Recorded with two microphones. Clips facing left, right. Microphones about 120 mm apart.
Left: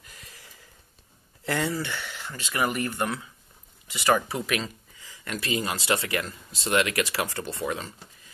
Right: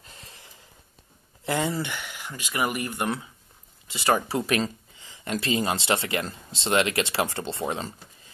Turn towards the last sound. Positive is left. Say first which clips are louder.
# right 1 dB
turn(degrees=-25)  # may be behind; listen again after turning